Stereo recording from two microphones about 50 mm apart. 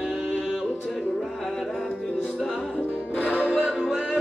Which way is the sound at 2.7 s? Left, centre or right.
Left.